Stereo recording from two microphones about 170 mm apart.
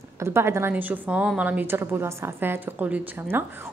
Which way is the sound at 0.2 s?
15° right (ahead or behind).